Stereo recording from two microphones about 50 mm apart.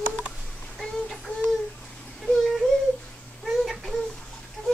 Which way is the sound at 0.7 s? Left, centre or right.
Centre.